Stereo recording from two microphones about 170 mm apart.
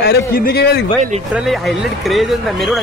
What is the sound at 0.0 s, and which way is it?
Speech, 70° left (ahead or behind).